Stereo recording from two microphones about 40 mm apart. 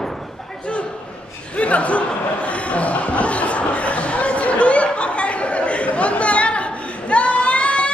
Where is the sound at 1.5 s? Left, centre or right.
Left.